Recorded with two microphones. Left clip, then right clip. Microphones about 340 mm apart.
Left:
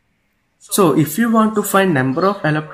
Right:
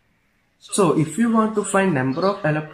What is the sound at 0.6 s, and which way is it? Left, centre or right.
Speech, centre.